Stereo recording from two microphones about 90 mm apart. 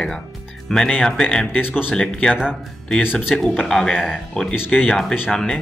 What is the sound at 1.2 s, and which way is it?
Speech, 20° left (ahead or behind).